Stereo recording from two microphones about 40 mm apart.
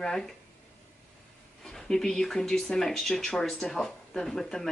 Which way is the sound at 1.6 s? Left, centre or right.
Centre.